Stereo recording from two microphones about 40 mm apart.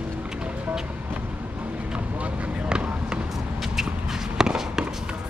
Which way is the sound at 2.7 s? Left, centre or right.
Right.